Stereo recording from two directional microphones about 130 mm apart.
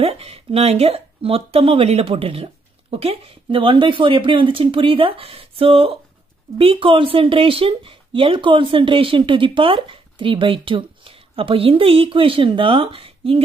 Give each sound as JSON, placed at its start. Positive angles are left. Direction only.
{"t": 0.0, "sound": "speech", "side_deg": -50}